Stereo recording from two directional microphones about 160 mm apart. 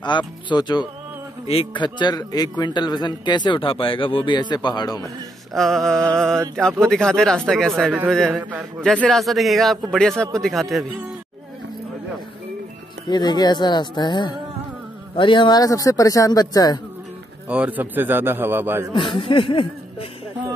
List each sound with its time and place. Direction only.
0.0 s a man's voice: 30° left (ahead or behind)
5.5 s speech: centre (ahead or behind)
8.3 s a man's voice: 10° right (ahead or behind)
9.0 s speech: centre (ahead or behind)
13.1 s a man's voice: 25° left (ahead or behind)
17.5 s a man's voice: 10° right (ahead or behind)
18.9 s speech: 35° left (ahead or behind)